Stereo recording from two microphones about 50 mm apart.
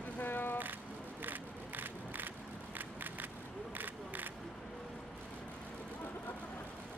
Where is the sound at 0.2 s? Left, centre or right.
Left.